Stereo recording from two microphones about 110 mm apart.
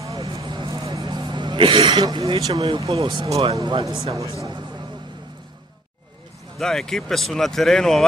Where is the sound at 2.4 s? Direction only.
35° right (ahead or behind).